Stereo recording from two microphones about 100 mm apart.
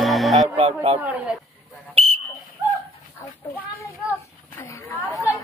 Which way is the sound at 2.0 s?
70° right (ahead or behind).